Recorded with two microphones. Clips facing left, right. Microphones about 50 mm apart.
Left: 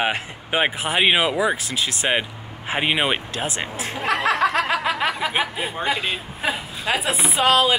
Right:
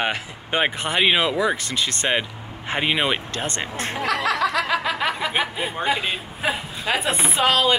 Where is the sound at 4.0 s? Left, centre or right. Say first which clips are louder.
Left 2 dB; left.